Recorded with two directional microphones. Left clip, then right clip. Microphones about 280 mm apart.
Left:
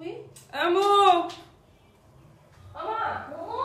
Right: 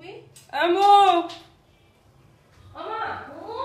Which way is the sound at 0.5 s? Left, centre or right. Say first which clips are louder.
Right 6 dB; right.